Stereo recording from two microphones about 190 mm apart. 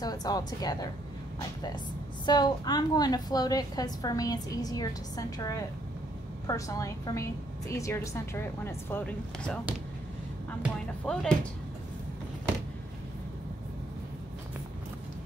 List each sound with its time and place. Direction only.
0.0 s a woman's voice: 20° left (ahead or behind)
2.2 s a woman's voice: 20° left (ahead or behind)
10.6 s speech: 5° left (ahead or behind)